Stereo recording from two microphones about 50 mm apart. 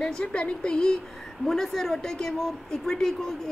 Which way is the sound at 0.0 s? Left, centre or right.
Centre.